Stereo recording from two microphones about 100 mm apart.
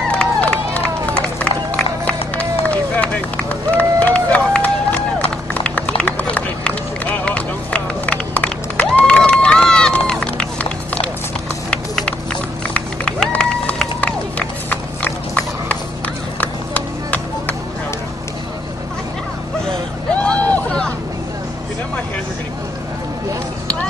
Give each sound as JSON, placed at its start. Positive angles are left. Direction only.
{"t": 0.1, "sound": "run", "side_deg": 10}
{"t": 16.3, "sound": "music", "side_deg": 15}
{"t": 20.2, "sound": "vehicle", "side_deg": 15}